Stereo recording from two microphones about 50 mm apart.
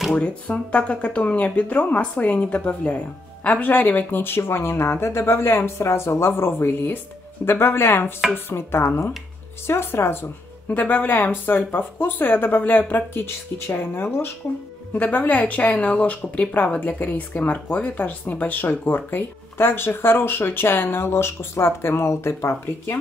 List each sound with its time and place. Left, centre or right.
0.1 s speech: left
10.7 s speech: left
15.0 s speech: left